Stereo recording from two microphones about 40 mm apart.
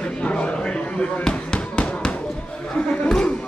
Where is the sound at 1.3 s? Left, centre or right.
Left.